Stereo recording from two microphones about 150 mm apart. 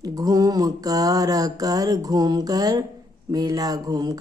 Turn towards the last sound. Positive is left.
turn(degrees=-25)  # may be behind; listen again after turning